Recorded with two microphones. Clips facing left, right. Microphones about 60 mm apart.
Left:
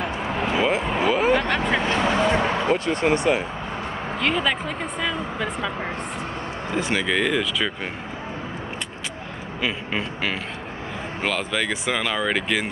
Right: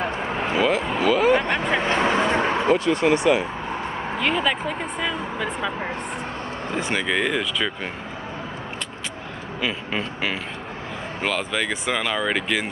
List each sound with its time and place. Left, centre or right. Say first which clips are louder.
0.6 s a sound: right 1 dB; left
1.8 s vehicle: right 1 dB; right
2.8 s speech: right 2 dB; left
4.2 s speech: even; centre
6.7 s speech: left 1 dB; centre
9.6 s speech: even; centre